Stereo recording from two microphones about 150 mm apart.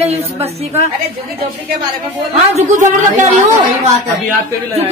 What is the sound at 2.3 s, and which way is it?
A woman's voice, 50° right (ahead or behind).